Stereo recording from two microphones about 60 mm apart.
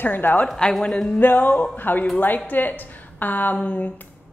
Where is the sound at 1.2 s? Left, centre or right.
Left.